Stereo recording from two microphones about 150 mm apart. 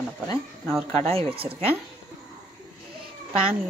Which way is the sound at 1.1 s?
40° right (ahead or behind).